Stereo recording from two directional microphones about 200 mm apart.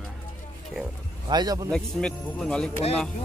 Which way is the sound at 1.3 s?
20° right (ahead or behind).